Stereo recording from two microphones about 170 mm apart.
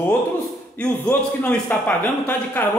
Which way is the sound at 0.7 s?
10° left (ahead or behind).